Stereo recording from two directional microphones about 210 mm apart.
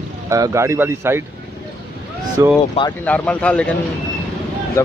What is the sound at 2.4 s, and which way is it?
Speech, 15° right (ahead or behind).